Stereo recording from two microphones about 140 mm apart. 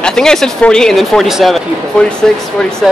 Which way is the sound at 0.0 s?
5° left (ahead or behind).